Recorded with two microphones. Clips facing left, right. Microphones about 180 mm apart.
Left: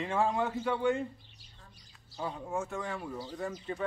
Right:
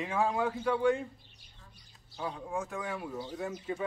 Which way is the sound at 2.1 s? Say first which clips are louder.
Left 1 dB; 5° left (ahead or behind).